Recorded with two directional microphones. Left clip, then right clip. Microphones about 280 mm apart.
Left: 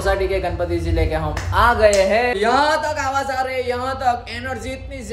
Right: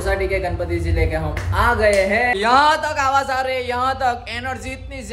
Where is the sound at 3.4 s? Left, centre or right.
Right.